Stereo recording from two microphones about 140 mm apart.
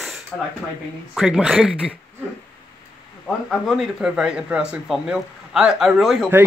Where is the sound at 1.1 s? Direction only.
5° right (ahead or behind).